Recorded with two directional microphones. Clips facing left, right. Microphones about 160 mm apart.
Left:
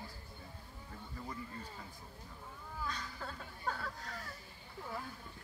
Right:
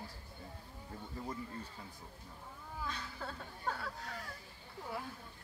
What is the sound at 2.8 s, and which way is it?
Speech, 5° right (ahead or behind).